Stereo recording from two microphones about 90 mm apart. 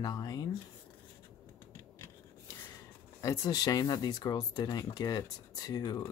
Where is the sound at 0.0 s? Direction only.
45° left (ahead or behind).